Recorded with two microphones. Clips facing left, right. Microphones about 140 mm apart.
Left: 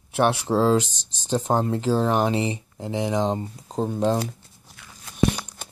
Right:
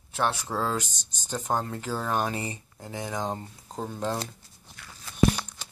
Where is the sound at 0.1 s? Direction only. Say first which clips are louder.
Left 7 dB; 65° left (ahead or behind).